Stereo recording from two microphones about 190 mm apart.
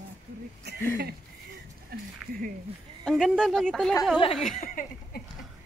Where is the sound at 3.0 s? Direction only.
Centre (ahead or behind).